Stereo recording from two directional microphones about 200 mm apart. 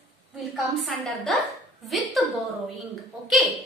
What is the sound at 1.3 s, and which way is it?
Speech, centre (ahead or behind).